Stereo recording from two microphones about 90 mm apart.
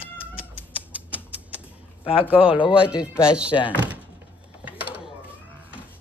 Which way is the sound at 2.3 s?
80° left.